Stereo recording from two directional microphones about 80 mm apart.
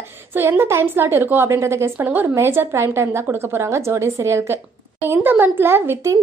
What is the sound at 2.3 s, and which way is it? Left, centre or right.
A woman's voice, right.